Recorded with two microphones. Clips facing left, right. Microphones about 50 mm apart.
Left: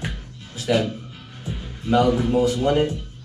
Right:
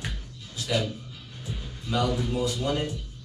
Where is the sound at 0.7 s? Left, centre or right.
Left.